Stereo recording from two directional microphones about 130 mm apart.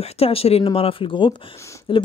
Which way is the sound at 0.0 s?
50° left (ahead or behind).